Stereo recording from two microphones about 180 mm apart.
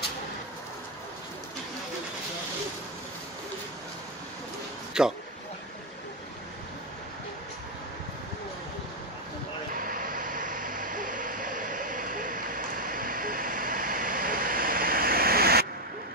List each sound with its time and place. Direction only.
5.0 s a man's voice: 5° right (ahead or behind)
9.8 s vehicle: 50° right (ahead or behind)